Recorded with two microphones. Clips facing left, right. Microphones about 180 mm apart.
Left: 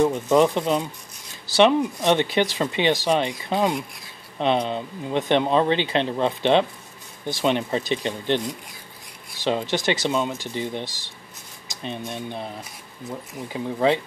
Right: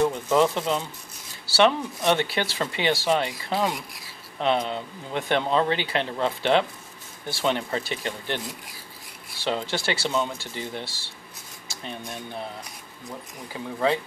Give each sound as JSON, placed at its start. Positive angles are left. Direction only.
{"t": 0.0, "sound": "speech", "side_deg": 20}
{"t": 9.4, "sound": "speech", "side_deg": 15}
{"t": 11.6, "sound": "cutlery", "side_deg": 20}
{"t": 12.1, "sound": "speech", "side_deg": 20}
{"t": 13.5, "sound": "speech", "side_deg": 20}